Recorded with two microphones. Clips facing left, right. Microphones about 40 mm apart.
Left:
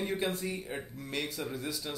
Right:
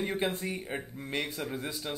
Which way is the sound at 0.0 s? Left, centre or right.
Right.